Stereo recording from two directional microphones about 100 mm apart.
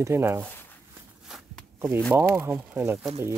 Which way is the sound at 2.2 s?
25° right (ahead or behind).